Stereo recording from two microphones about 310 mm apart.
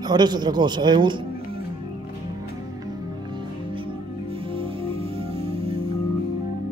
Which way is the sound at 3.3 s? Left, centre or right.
Centre.